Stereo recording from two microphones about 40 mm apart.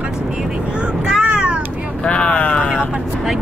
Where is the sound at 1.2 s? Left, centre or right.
Right.